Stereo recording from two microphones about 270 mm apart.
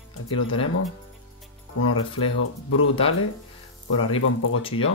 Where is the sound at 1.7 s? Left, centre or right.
Left.